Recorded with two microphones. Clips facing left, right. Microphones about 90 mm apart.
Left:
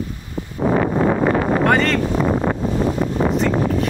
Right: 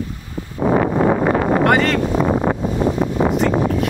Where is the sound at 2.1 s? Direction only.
30° right (ahead or behind).